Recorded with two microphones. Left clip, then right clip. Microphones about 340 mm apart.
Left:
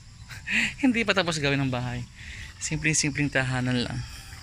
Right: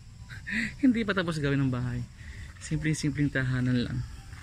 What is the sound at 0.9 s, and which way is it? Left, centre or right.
Speech, centre.